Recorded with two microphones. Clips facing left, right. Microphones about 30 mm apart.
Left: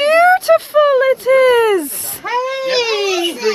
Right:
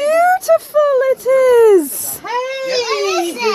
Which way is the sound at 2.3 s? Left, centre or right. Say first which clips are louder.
Left 2 dB; centre.